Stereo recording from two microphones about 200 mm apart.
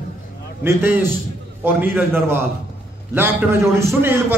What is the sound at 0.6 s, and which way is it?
A man's voice, 10° right (ahead or behind).